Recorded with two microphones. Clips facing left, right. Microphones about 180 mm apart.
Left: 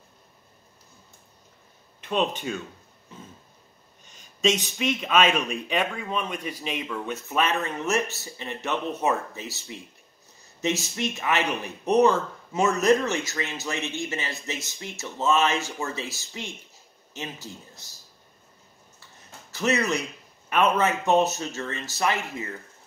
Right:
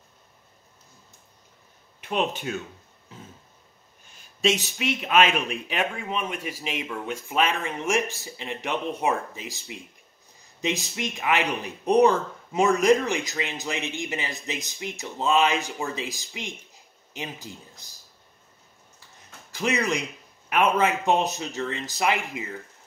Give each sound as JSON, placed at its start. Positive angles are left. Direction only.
{"t": 2.0, "sound": "speech", "side_deg": -10}
{"t": 4.1, "sound": "a sound", "side_deg": -10}
{"t": 4.7, "sound": "speech", "side_deg": -10}
{"t": 19.5, "sound": "speech", "side_deg": -15}